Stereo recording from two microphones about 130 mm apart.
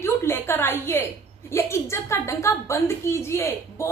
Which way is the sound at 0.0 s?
20° left (ahead or behind).